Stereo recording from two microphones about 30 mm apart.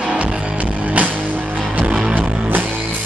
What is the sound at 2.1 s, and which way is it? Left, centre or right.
Music, right.